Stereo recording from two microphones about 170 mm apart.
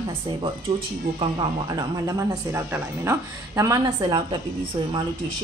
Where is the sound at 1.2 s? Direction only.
25° right (ahead or behind).